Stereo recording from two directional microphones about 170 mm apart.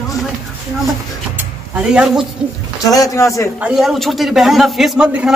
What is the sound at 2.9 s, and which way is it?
Speech, 20° left (ahead or behind).